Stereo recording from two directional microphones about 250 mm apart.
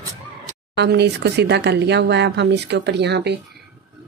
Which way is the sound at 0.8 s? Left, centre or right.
Right.